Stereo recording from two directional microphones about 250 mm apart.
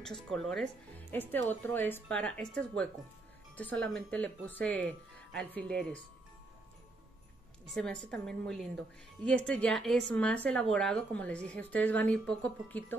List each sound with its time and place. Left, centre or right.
0.0 s a woman's voice: centre
7.7 s a woman's voice: centre